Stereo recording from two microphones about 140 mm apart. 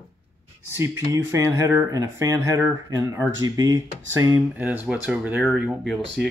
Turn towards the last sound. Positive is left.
turn(degrees=-5)  # may be behind; listen again after turning